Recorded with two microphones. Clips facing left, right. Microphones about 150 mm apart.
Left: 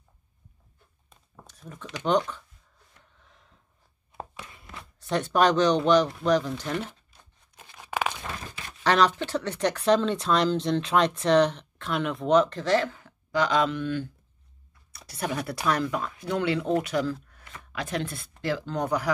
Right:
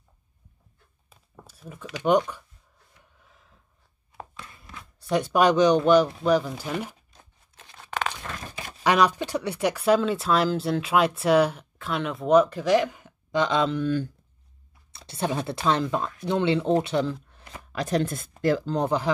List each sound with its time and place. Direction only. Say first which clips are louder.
1.1 s a sound: right 2 dB; 5° right (ahead or behind)
3.0 s gasp: right 1 dB; 5° right (ahead or behind)
5.1 s speech: right 2 dB; 10° right (ahead or behind)
7.1 s a sound: right 3 dB; 10° left (ahead or behind)
8.8 s speech: right 1 dB; 10° right (ahead or behind); by 18.8 s 45° right (ahead or behind)
18.8 s speech: right 2 dB; 25° right (ahead or behind)